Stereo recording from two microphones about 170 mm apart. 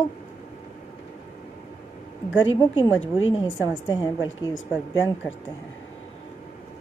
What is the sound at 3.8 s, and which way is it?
Speech, 25° left (ahead or behind).